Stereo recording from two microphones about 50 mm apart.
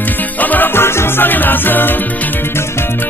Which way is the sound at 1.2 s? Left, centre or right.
Left.